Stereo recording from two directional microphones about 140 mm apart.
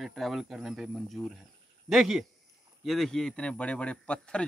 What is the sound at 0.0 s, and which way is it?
Speech, centre (ahead or behind).